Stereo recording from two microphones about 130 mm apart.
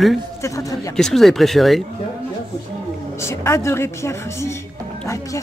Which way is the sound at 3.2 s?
20° left (ahead or behind).